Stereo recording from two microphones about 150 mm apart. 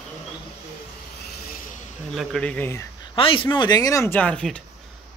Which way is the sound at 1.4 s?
70° left (ahead or behind).